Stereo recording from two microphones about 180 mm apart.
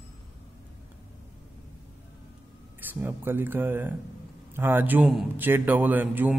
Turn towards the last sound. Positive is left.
turn(degrees=-10)  # may be behind; listen again after turning